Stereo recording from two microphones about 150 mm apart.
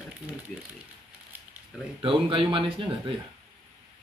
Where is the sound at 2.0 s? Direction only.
35° right (ahead or behind).